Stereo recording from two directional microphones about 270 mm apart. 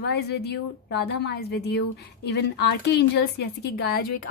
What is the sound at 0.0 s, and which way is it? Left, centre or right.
A woman's voice, left.